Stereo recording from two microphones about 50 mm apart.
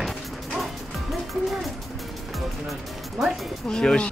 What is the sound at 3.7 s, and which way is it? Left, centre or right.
Speech, centre.